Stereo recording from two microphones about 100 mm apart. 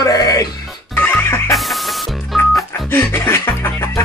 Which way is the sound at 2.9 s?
25° left (ahead or behind).